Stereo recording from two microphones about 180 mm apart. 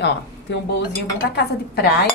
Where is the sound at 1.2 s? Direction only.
85° left.